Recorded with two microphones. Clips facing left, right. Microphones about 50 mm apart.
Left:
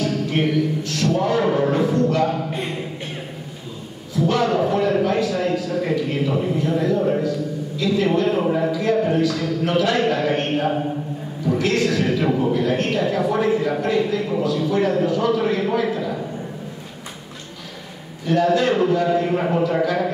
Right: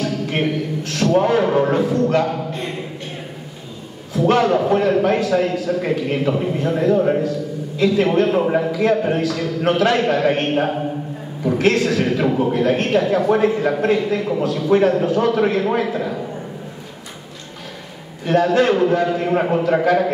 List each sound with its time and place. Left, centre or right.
0.0 s a man's voice: right
4.1 s a man's voice: right
18.2 s a man's voice: right